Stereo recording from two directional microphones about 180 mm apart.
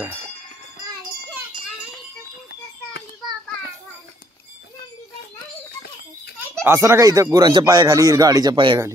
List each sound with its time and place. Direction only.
6.5 s speech: 15° right (ahead or behind)